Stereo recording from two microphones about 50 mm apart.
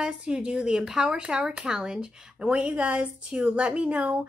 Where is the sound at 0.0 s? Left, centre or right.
Centre.